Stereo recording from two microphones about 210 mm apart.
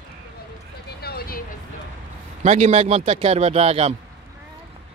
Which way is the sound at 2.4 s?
30° right (ahead or behind).